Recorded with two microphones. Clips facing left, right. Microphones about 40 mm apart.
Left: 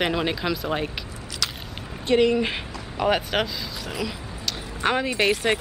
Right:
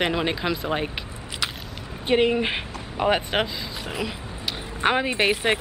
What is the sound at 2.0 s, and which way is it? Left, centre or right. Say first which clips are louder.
Speech: left 1 dB; right.